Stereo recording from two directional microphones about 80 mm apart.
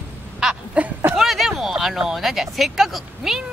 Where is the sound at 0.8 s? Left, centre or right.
Centre.